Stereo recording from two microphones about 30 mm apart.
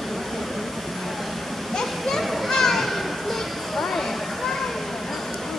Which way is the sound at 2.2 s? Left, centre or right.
Centre.